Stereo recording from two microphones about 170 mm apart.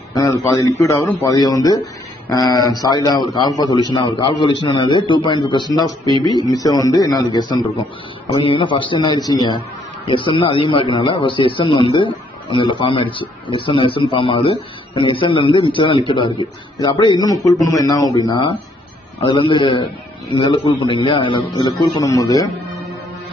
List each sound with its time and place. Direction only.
0.1 s a man's voice: 20° left (ahead or behind)